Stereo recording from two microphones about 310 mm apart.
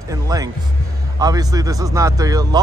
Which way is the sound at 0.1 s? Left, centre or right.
Centre.